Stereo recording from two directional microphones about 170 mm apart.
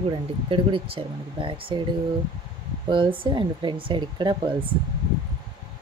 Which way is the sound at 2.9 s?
30° right (ahead or behind).